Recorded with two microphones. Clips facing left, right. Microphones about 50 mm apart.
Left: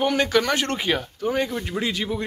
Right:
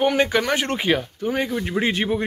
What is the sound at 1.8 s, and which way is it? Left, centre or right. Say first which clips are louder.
Speech: right 5 dB; right.